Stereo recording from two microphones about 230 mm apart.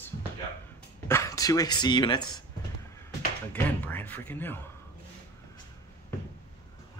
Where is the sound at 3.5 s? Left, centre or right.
Centre.